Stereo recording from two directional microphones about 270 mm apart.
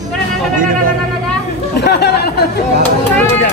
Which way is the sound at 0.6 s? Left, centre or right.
Right.